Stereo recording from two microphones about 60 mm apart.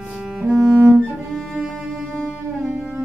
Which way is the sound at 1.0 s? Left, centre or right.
Centre.